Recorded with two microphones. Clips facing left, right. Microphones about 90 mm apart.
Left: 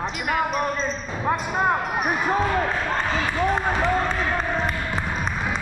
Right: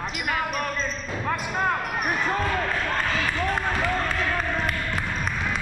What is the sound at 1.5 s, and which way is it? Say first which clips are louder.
Speech: left 3 dB; 15° left (ahead or behind).